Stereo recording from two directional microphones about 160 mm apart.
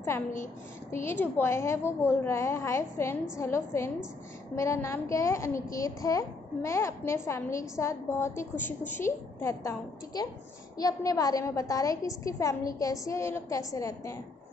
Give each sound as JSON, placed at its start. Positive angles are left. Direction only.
{"t": 0.9, "sound": "a woman's voice", "side_deg": 15}